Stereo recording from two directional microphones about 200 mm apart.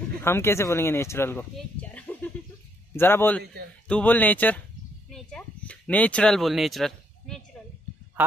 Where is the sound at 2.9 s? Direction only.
10° left (ahead or behind).